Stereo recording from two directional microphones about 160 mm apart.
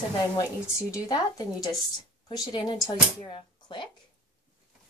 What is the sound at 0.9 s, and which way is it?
Speech, 25° left (ahead or behind).